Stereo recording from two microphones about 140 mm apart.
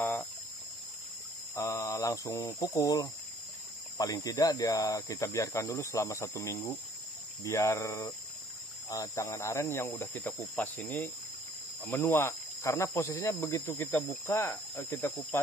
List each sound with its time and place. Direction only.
0.0 s cricket: 25° left (ahead or behind)
1.5 s cricket: 25° left (ahead or behind)
10.6 s speech: 10° left (ahead or behind)